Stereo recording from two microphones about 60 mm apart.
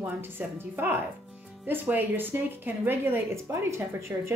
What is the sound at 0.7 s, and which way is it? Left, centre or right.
A woman's voice, right.